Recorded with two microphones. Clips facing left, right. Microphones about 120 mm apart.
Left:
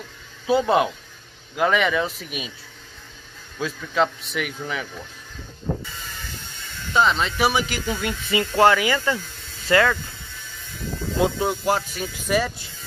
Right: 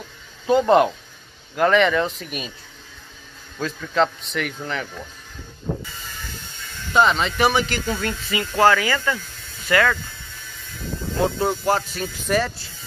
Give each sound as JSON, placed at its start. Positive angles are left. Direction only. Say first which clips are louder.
{"t": 0.5, "sound": "speech", "louder": "right 3 dB", "side_deg": 5}
{"t": 3.5, "sound": "speech", "louder": "right 2 dB", "side_deg": 5}
{"t": 6.9, "sound": "speech", "louder": "right 2 dB", "side_deg": 0}
{"t": 8.3, "sound": "speech", "louder": "left 1 dB", "side_deg": 25}
{"t": 11.1, "sound": "speech", "louder": "even", "side_deg": 10}